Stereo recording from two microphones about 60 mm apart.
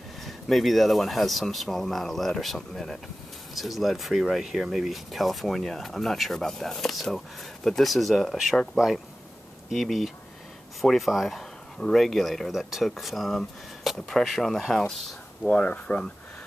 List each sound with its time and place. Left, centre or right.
0.2 s speech: centre
15.4 s speech: left